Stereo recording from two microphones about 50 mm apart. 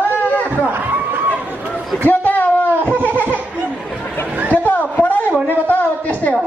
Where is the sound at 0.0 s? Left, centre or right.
Left.